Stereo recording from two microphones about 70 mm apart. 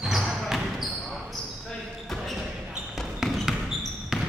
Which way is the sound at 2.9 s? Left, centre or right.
Centre.